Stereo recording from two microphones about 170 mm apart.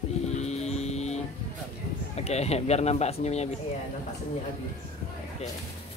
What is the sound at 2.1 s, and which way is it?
Speech, 40° left (ahead or behind).